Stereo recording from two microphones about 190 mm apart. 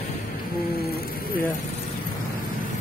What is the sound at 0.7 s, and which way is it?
Music, 55° left (ahead or behind).